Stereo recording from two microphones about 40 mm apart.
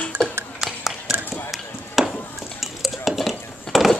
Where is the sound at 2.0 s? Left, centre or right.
Centre.